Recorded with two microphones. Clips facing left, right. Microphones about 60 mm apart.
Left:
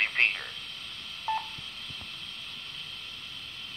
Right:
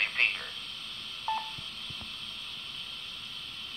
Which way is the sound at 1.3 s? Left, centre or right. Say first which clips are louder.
Left 2 dB; centre.